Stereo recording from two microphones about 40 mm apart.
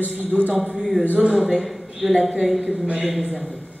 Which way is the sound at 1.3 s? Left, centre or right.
Centre.